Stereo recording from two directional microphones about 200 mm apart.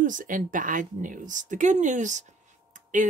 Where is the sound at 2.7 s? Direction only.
40° right (ahead or behind).